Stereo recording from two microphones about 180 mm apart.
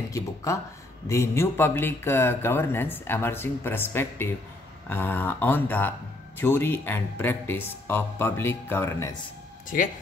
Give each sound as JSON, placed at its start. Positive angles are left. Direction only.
{"t": 0.1, "sound": "a sound", "side_deg": 15}
{"t": 1.0, "sound": "speech", "side_deg": 15}
{"t": 9.7, "sound": "speech", "side_deg": 50}